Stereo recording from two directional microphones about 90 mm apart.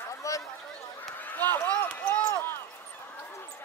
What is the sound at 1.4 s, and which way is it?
Speech, 20° left (ahead or behind).